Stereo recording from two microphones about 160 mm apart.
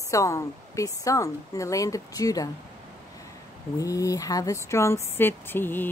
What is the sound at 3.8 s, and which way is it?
Speech, 20° left (ahead or behind).